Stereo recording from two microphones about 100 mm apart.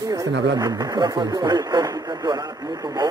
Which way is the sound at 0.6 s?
45° right (ahead or behind).